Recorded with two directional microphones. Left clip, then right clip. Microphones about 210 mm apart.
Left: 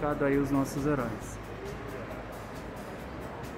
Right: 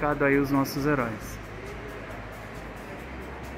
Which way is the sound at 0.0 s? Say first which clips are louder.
Right 5 dB; 20° right (ahead or behind).